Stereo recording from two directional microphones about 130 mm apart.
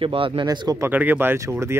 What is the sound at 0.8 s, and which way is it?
Speech, 15° right (ahead or behind).